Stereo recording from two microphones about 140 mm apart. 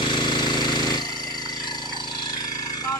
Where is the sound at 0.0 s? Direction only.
35° left (ahead or behind).